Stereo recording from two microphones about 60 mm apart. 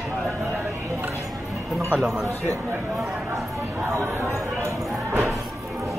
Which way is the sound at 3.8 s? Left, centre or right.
Right.